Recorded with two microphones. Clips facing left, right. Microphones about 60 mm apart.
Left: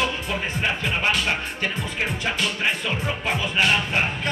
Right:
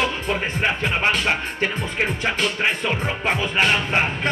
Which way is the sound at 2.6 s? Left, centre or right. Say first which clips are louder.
Right 3 dB; right.